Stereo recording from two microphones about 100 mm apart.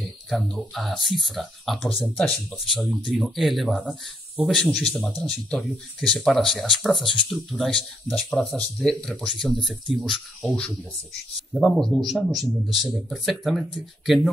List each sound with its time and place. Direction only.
0.3 s speech: centre (ahead or behind)